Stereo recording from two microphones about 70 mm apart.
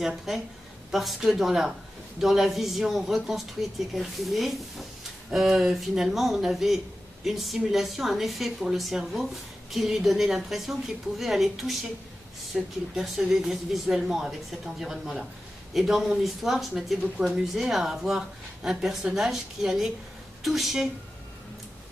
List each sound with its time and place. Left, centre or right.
0.0 s a woman's voice: centre